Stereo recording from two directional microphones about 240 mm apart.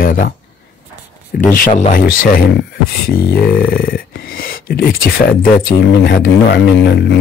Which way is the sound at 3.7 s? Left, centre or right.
Left.